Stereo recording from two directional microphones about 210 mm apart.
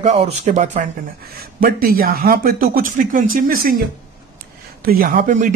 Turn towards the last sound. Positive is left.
turn(degrees=-40)  # may be behind; listen again after turning